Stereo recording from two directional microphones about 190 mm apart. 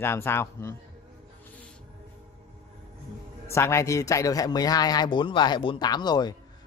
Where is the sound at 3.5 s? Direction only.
15° left (ahead or behind).